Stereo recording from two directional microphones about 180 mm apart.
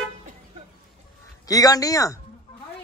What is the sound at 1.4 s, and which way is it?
Speech, 20° left (ahead or behind).